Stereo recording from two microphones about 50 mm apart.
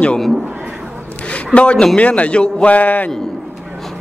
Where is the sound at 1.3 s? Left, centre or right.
Left.